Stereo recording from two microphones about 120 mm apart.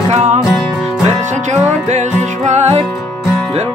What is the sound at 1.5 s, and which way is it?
Music, 75° right (ahead or behind).